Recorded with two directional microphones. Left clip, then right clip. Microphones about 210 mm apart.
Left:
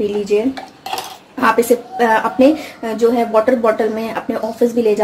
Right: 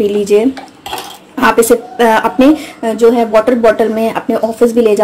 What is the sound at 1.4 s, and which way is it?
Speech, 30° right (ahead or behind).